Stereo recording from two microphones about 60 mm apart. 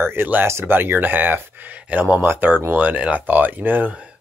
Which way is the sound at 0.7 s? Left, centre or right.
Right.